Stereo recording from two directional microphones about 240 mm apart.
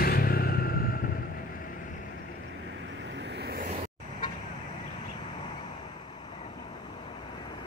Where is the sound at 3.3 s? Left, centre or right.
Right.